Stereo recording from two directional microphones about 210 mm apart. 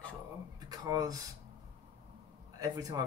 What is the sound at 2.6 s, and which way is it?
Speech, 15° right (ahead or behind).